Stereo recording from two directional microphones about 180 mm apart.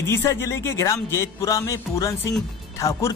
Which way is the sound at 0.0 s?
15° left (ahead or behind).